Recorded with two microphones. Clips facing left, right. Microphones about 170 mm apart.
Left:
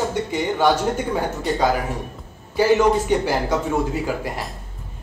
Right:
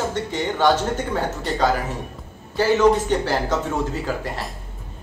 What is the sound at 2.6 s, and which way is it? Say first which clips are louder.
A man's voice: even; 10° left (ahead or behind).